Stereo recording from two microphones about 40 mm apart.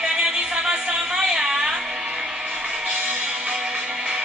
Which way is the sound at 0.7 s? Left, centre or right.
Centre.